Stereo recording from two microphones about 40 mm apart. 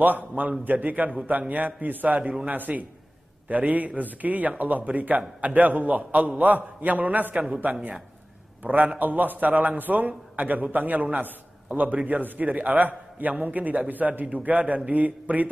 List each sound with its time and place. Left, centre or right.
0.4 s a man's voice: right
8.6 s a man's voice: right